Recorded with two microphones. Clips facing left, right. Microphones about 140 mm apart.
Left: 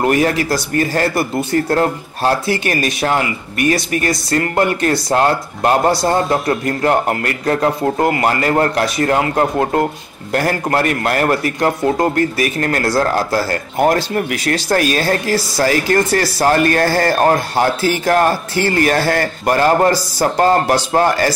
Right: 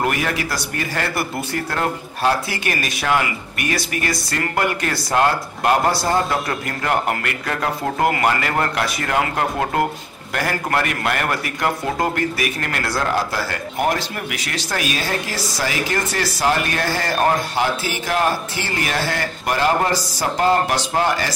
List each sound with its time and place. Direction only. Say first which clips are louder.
0.0 s a man's voice: left 7 dB; 30° left (ahead or behind)